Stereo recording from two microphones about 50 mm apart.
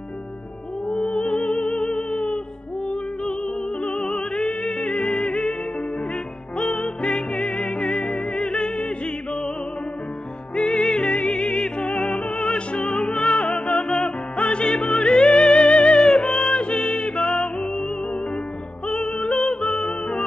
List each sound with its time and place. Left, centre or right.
0.8 s music: centre
3.8 s music: centre
6.6 s music: centre
10.5 s music: centre
18.9 s music: centre